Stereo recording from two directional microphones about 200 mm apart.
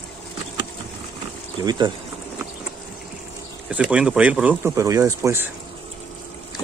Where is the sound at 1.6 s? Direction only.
20° right (ahead or behind).